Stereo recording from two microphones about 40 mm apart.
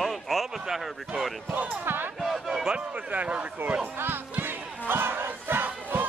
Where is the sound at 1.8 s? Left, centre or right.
Right.